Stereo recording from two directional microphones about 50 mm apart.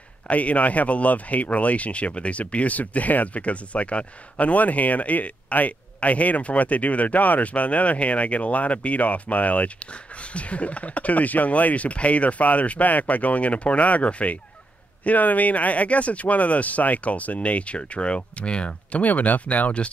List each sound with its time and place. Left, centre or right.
0.3 s speech: left